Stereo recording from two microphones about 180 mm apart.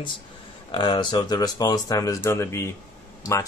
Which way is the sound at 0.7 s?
25° left (ahead or behind).